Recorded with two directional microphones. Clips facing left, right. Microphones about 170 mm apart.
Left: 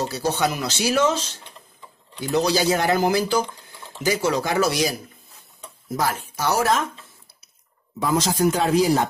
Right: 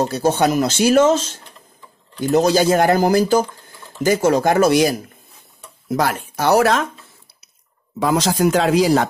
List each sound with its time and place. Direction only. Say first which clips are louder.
0.0 s speech: right 6 dB; 50° right (ahead or behind)
5.9 s speech: right 5 dB; 70° right (ahead or behind)
8.0 s speech: right 4 dB; 90° right